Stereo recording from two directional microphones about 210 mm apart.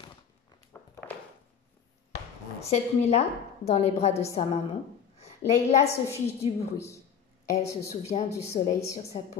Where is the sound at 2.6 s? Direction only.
30° left (ahead or behind).